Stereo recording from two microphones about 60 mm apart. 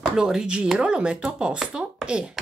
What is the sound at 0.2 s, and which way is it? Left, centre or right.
Speech, centre.